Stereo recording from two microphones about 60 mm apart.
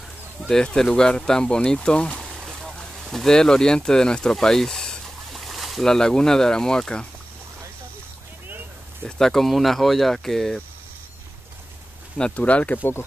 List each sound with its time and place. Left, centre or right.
0.5 s speech: centre
9.0 s speech: centre
12.4 s speech: left